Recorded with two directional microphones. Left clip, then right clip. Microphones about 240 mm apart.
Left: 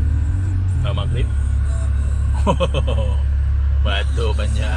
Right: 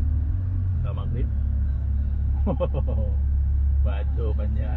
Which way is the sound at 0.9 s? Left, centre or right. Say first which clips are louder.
Left 11 dB; centre.